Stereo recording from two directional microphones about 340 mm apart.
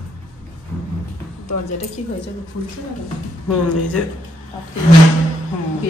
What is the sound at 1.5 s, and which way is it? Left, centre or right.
Speech, left.